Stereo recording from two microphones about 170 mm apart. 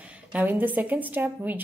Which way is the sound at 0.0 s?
10° right (ahead or behind).